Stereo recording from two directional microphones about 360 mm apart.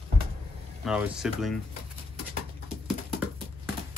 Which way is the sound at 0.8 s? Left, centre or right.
Centre.